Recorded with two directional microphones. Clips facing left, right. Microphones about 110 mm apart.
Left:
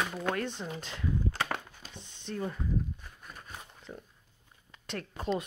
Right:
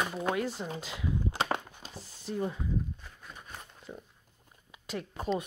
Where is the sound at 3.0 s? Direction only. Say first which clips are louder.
Even; 10° left (ahead or behind).